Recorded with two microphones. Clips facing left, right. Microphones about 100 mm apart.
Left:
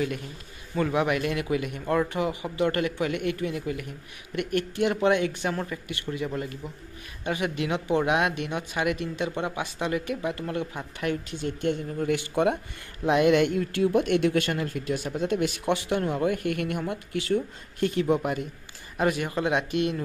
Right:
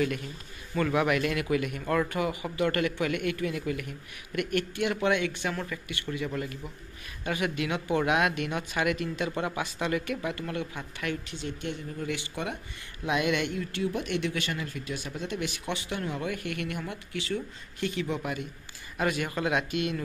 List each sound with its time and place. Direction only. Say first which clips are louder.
0.7 s speech: left 1 dB; 20° left (ahead or behind)
11.4 s speech: left 9 dB; 45° left (ahead or behind)
18.9 s speech: left 3 dB; 30° left (ahead or behind)